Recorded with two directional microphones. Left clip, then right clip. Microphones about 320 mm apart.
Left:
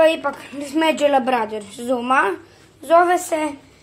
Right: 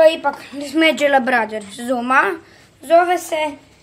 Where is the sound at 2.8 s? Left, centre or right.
Centre.